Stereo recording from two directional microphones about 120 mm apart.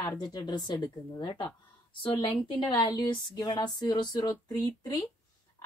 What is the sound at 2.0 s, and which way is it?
Speech, 50° left (ahead or behind).